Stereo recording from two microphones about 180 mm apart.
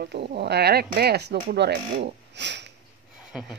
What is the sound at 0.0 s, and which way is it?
Speech, 65° right (ahead or behind).